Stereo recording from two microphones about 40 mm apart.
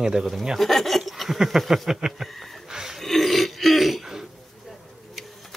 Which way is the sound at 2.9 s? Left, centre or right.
Centre.